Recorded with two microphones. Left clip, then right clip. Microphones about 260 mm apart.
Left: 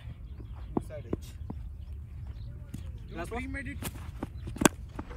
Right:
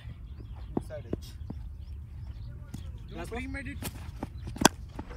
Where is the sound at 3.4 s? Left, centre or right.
Centre.